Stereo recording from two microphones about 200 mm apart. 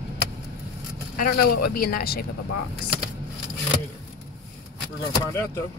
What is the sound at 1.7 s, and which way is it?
Speech, 50° left (ahead or behind).